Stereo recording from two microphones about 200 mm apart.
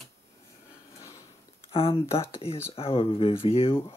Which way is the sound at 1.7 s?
30° left (ahead or behind).